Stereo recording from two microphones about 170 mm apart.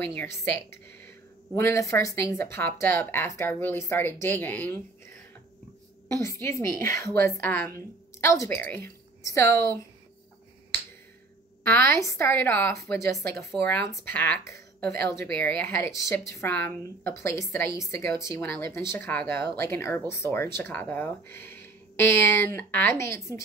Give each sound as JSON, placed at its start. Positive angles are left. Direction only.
{"t": 0.0, "sound": "speech", "side_deg": 15}
{"t": 1.5, "sound": "speech", "side_deg": 15}
{"t": 6.2, "sound": "a woman's voice", "side_deg": 15}
{"t": 11.6, "sound": "speech", "side_deg": 15}